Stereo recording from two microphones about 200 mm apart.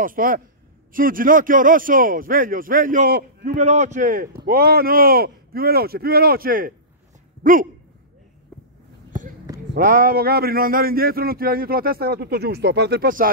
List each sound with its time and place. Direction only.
0.0 s a man's voice: 45° right (ahead or behind)
3.5 s a man's voice: 35° right (ahead or behind)
9.8 s a man's voice: 45° right (ahead or behind)